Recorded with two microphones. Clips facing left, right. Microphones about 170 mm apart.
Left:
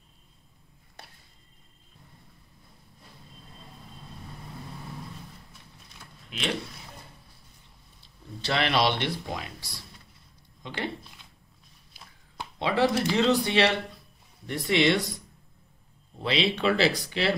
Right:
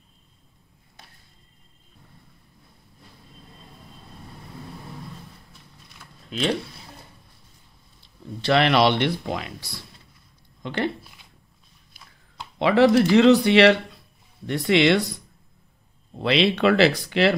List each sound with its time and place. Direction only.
6.3 s speech: 35° right (ahead or behind)
8.4 s speech: 60° right (ahead or behind)
10.6 s speech: 60° right (ahead or behind)
12.5 s speech: 75° right (ahead or behind)
16.2 s speech: 65° right (ahead or behind)